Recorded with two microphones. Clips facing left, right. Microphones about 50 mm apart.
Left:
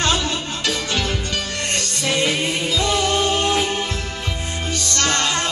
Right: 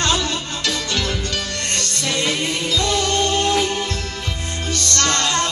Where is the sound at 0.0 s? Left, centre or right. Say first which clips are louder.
Even; centre.